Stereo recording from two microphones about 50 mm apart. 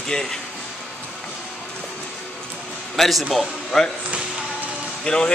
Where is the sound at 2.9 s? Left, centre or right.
Centre.